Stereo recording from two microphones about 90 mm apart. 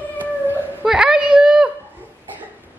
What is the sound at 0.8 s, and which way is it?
Speech, 10° right (ahead or behind).